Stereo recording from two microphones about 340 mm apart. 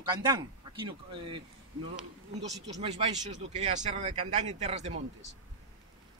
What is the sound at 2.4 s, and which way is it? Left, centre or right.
Speech, centre.